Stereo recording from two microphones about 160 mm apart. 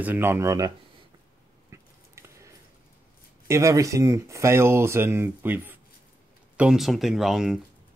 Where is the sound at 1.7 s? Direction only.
15° right (ahead or behind).